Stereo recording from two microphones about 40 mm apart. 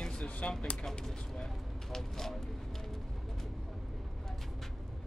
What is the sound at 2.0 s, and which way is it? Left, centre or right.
Speech, centre.